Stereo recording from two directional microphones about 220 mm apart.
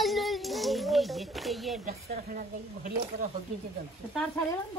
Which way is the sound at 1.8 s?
40° right (ahead or behind).